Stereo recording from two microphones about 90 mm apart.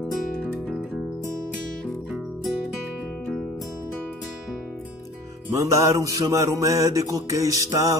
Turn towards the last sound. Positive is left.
turn(degrees=-40)  # may be behind; listen again after turning